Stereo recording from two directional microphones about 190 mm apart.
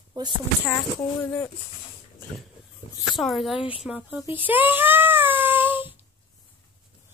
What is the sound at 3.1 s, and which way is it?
Speech, centre (ahead or behind).